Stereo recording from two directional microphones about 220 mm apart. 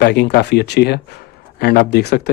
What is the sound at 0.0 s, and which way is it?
Speech, 50° left (ahead or behind).